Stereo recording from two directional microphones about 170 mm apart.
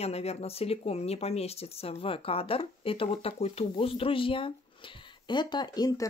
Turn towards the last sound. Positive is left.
turn(degrees=20)  # may be behind; listen again after turning